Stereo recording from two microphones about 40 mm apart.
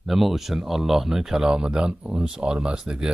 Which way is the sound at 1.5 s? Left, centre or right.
Right.